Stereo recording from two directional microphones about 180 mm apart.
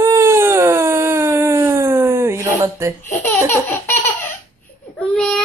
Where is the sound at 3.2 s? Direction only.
10° left (ahead or behind).